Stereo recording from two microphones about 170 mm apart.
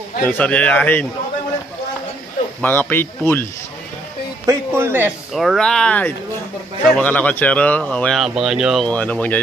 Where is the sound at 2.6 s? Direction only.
10° left (ahead or behind).